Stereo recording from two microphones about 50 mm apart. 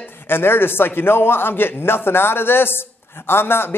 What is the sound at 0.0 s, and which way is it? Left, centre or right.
A man's voice, left.